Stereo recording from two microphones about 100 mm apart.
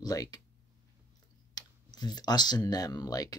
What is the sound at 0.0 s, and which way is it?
Speech, 40° left (ahead or behind).